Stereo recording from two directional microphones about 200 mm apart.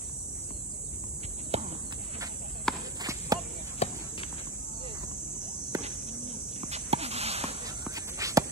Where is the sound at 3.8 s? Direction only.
30° left (ahead or behind).